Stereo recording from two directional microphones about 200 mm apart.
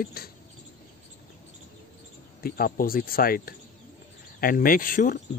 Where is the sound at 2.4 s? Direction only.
45° left (ahead or behind).